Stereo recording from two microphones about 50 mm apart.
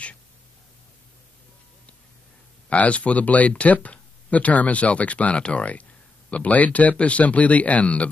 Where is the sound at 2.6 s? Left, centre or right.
Left.